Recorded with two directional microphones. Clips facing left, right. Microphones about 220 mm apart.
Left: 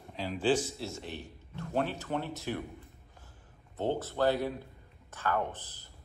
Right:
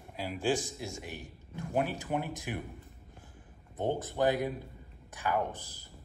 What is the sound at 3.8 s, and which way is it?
Speech, 15° right (ahead or behind).